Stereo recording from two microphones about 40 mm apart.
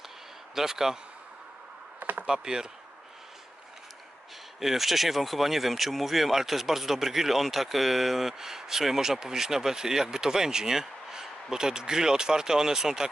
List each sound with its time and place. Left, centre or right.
0.6 s speech: centre
2.0 s chop: right
2.2 s speech: centre
4.6 s speech: centre